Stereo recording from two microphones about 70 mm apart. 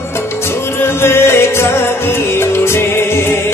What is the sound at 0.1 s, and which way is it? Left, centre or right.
Music, left.